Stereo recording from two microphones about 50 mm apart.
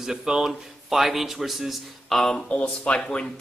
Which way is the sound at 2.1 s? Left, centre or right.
Centre.